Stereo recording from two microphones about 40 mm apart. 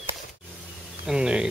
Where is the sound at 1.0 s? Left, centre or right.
Centre.